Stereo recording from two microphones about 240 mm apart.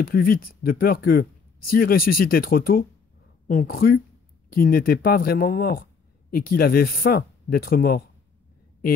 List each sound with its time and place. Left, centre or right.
0.0 s speech: left